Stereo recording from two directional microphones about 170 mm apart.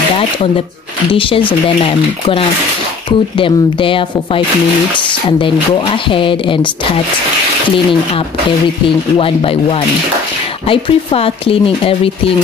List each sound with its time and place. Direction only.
1.1 s a woman's voice: 30° left (ahead or behind)
3.1 s a woman's voice: 30° left (ahead or behind)
9.2 s a woman's voice: 35° left (ahead or behind)